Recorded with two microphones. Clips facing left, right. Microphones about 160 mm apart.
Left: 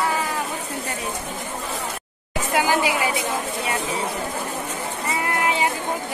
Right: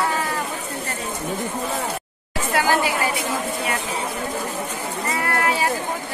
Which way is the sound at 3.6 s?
25° left (ahead or behind).